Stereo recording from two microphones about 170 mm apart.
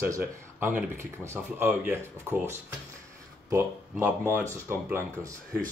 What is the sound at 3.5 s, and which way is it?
Speech, 15° right (ahead or behind).